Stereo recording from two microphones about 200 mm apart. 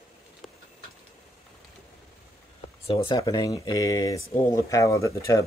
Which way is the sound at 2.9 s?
30° left (ahead or behind).